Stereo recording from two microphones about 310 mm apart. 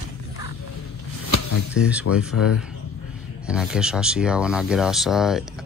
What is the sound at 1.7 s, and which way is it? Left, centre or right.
Speech, centre.